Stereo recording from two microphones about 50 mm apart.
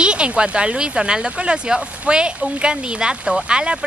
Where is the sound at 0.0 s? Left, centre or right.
Centre.